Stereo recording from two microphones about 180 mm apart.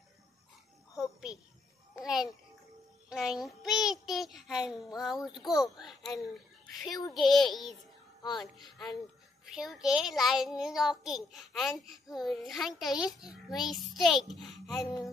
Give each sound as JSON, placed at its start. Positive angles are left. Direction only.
{"t": 2.0, "sound": "a sound", "side_deg": -5}
{"t": 3.1, "sound": "music", "side_deg": 0}
{"t": 3.8, "sound": "child singing", "side_deg": 0}
{"t": 7.2, "sound": "a child's voice", "side_deg": 0}
{"t": 8.2, "sound": "music", "side_deg": 25}
{"t": 9.5, "sound": "a child's voice", "side_deg": -5}